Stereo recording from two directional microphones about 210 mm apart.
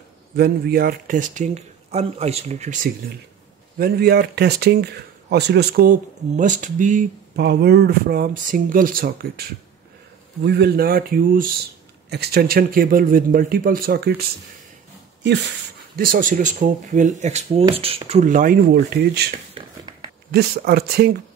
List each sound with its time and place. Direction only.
0.4 s speech: 45° right (ahead or behind)
3.7 s speech: 45° right (ahead or behind)
7.3 s speech: 50° right (ahead or behind)
15.2 s speech: 55° right (ahead or behind)
16.0 s speech: 40° right (ahead or behind)